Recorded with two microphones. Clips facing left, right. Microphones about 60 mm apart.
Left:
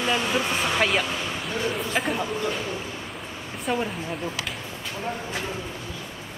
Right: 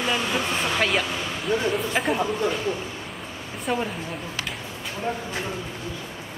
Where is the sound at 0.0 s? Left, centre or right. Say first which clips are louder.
Left 1 dB; centre.